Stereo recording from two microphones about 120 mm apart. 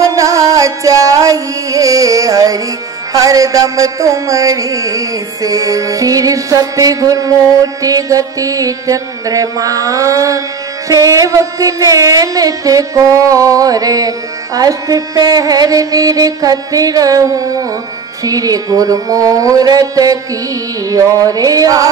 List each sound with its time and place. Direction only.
0.1 s music: 25° right (ahead or behind)